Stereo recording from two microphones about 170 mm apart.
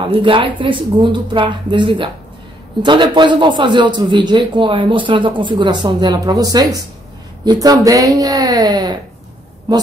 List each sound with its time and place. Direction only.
0.0 s a man's voice: 30° right (ahead or behind)